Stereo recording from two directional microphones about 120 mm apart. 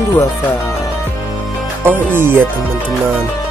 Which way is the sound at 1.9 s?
20° right (ahead or behind).